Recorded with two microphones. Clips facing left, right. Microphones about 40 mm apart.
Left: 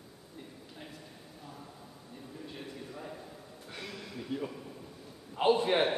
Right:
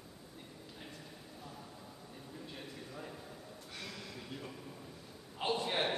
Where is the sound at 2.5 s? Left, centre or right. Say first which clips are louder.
Left 4 dB; centre.